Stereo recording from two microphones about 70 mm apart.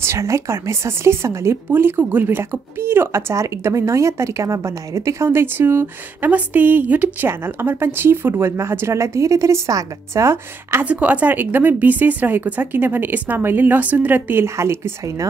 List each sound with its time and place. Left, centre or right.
0.0 s a woman's voice: right
1.7 s a woman's voice: right
6.3 s a woman's voice: right
10.8 s speech: right